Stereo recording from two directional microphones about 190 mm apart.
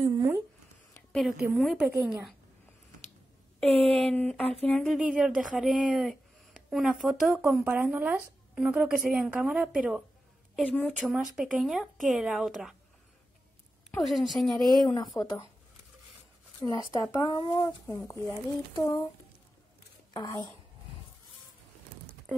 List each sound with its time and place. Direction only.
0.0 s a sound: 15° right (ahead or behind)
1.1 s a woman's voice: centre (ahead or behind)
3.5 s a woman's voice: 5° left (ahead or behind)
10.6 s speech: 10° left (ahead or behind)
11.0 s speech: centre (ahead or behind)
14.0 s speech: centre (ahead or behind)
15.1 s speech: 15° left (ahead or behind)
16.9 s speech: 20° left (ahead or behind)
20.1 s a woman's voice: 20° left (ahead or behind)